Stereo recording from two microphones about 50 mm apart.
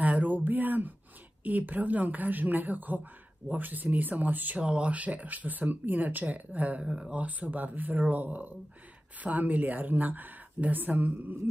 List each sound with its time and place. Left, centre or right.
0.0 s a sound: right
1.4 s speech: right
4.6 s speech: right
6.9 s speech: centre
7.2 s speech: right